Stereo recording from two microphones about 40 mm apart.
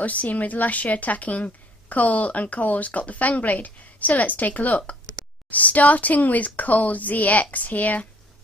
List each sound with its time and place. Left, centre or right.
0.0 s a woman's voice: left